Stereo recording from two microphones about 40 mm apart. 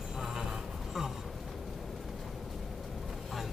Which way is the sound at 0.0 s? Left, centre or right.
Centre.